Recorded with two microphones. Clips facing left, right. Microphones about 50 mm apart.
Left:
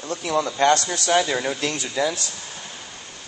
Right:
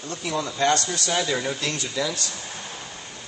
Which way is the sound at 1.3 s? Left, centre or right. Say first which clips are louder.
Left 2 dB; centre.